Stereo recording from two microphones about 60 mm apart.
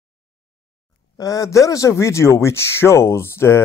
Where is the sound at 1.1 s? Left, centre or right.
Left.